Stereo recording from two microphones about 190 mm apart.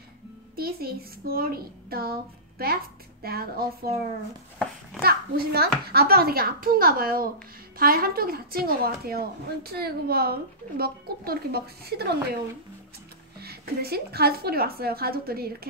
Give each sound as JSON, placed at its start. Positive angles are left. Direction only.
{"t": 0.6, "sound": "speech", "side_deg": -50}
{"t": 5.0, "sound": "speech", "side_deg": -55}
{"t": 13.4, "sound": "speech", "side_deg": -55}